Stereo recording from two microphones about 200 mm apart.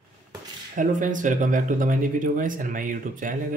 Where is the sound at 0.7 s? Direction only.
40° right (ahead or behind).